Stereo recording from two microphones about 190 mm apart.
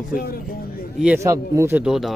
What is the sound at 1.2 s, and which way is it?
Speech, 15° right (ahead or behind).